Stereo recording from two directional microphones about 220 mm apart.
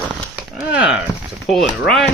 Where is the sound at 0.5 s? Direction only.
5° right (ahead or behind).